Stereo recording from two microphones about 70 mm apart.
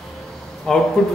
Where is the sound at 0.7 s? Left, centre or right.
Centre.